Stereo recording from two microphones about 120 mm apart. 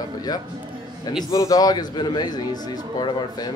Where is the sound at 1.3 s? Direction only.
30° left (ahead or behind).